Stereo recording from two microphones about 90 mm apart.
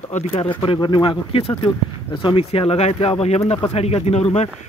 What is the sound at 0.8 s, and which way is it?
Speech, 60° left (ahead or behind).